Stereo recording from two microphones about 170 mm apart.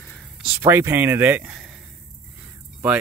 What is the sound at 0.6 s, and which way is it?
Speech, 15° right (ahead or behind).